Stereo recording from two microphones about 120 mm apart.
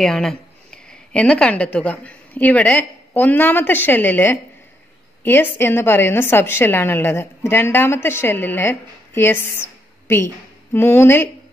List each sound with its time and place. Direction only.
0.0 s a woman's voice: 5° left (ahead or behind); by 11.2 s 20° left (ahead or behind)